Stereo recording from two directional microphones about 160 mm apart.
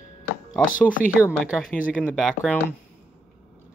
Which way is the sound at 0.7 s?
55° left (ahead or behind).